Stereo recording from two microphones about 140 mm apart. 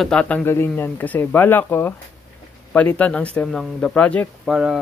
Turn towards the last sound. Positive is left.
turn(degrees=-5)  # may be behind; listen again after turning